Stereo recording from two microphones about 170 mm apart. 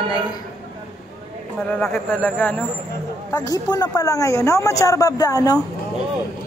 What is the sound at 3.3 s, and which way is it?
Speech, 20° left (ahead or behind).